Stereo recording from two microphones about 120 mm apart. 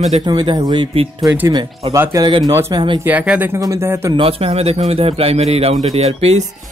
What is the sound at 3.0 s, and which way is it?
Speech, 15° right (ahead or behind).